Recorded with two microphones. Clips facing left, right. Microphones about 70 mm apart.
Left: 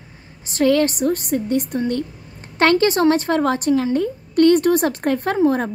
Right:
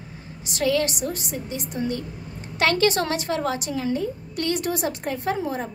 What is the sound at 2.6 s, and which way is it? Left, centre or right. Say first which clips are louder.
A woman's voice: left 6 dB; left.